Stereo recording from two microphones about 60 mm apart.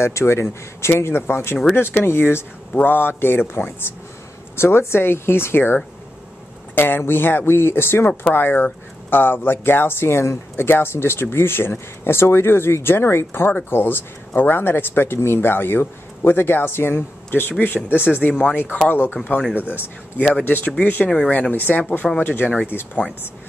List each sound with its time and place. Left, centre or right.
0.0 s speech: left
8.1 s speech: centre
8.4 s speech: left
20.4 s speech: left
22.2 s speech: left